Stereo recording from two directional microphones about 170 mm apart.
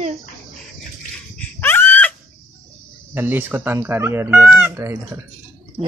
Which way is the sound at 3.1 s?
10° right (ahead or behind).